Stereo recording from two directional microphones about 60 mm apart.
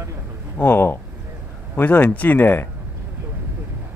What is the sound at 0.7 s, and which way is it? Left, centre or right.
Speech, left.